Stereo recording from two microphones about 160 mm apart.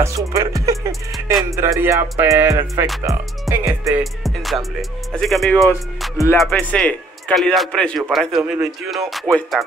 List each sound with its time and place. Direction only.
0.0 s music: 20° right (ahead or behind)
4.0 s music: centre (ahead or behind)
5.1 s a man's voice: centre (ahead or behind)